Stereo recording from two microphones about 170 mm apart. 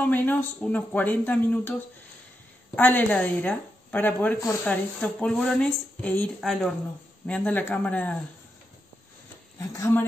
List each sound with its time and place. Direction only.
0.0 s speech: 10° left (ahead or behind)
9.6 s speech: 20° left (ahead or behind)